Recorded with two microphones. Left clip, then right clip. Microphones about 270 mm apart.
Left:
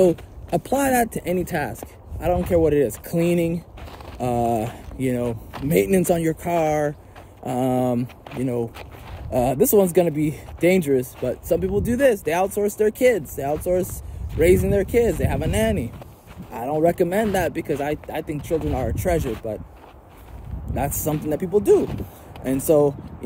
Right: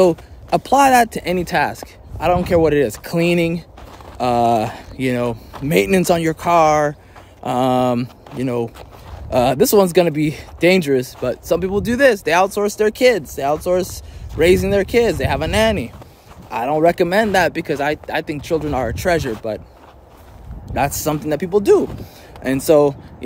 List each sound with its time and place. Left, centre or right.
0.0 s speech: centre
20.7 s speech: centre